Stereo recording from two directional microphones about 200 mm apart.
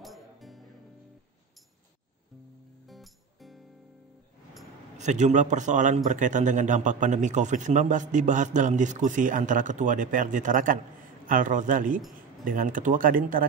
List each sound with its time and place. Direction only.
0.0 s music: centre (ahead or behind)
2.9 s music: centre (ahead or behind)
4.9 s a man's voice: 35° right (ahead or behind)